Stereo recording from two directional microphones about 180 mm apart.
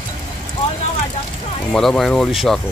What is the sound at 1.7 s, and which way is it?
Speech, centre (ahead or behind).